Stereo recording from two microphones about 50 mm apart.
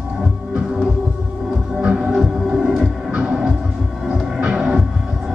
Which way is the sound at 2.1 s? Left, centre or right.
Centre.